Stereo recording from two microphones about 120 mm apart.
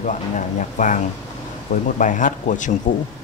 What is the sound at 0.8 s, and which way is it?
Speech, 90° left.